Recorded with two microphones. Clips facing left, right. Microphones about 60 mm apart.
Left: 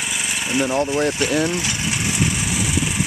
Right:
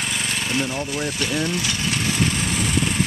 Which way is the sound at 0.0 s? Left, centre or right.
Centre.